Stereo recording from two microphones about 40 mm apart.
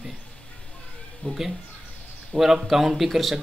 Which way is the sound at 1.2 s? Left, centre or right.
Left.